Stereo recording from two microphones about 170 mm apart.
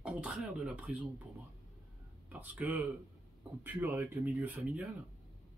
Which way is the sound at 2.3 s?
10° right (ahead or behind).